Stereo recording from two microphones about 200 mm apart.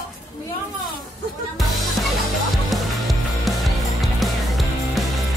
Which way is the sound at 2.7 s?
Centre (ahead or behind).